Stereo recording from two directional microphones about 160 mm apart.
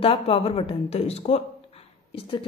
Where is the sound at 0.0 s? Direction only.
35° left (ahead or behind).